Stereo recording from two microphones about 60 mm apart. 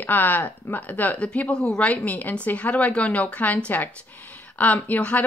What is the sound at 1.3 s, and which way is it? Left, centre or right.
Speech, centre.